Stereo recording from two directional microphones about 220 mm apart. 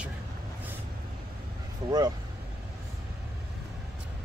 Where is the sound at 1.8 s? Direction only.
20° right (ahead or behind).